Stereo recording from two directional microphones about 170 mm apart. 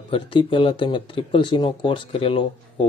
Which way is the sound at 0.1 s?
30° left (ahead or behind).